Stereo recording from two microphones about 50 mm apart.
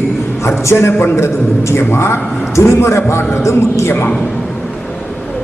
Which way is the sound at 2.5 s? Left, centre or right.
Left.